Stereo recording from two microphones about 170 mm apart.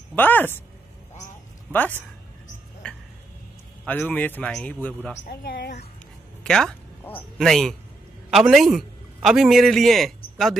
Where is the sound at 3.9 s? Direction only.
10° left (ahead or behind).